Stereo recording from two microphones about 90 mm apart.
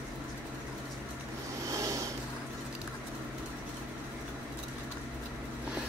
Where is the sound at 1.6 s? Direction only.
35° right (ahead or behind).